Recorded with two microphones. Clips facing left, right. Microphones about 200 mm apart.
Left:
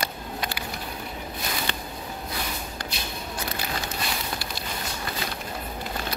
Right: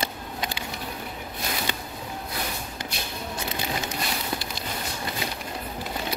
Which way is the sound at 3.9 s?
20° right (ahead or behind).